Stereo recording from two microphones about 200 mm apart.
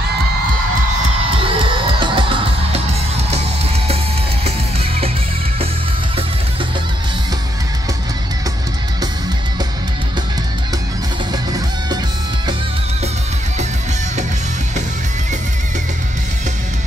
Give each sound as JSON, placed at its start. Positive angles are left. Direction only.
{"t": 1.3, "sound": "music", "side_deg": -25}